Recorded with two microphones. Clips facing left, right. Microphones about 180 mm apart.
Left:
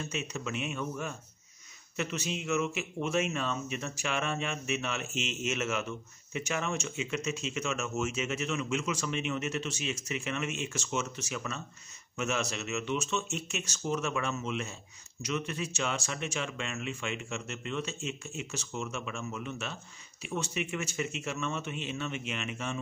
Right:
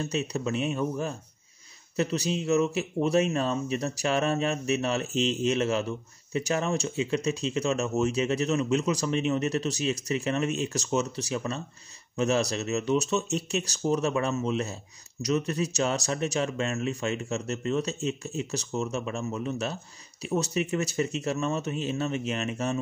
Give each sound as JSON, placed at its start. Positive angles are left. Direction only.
{"t": 0.0, "sound": "speech", "side_deg": -35}